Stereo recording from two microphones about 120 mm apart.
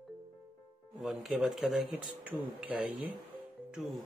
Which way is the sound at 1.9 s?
15° right (ahead or behind).